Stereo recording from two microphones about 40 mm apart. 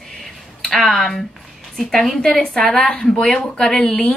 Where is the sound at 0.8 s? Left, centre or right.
Centre.